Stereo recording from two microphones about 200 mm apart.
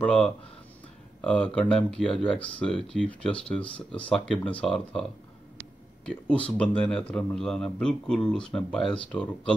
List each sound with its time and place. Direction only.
0.0 s a man's voice: 5° left (ahead or behind)
6.0 s a man's voice: 5° left (ahead or behind)